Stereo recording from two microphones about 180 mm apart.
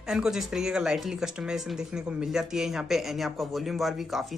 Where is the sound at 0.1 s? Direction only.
5° right (ahead or behind).